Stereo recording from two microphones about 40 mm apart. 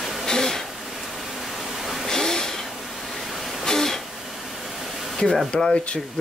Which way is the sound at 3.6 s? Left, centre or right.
Centre.